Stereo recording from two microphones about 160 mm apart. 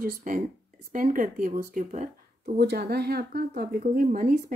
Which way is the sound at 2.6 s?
90° right.